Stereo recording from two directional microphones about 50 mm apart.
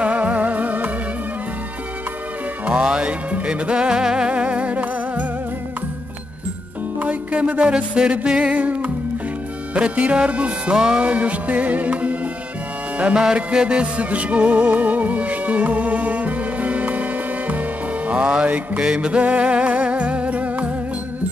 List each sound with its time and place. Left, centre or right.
0.0 s music: right
2.7 s music: centre
7.0 s music: right
13.0 s music: centre